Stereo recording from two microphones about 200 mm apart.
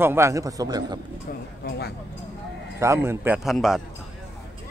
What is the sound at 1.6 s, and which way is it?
Speech, 50° left (ahead or behind).